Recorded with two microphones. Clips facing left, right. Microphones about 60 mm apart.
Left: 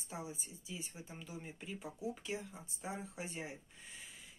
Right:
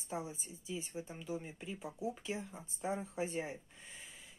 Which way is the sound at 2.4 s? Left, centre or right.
Right.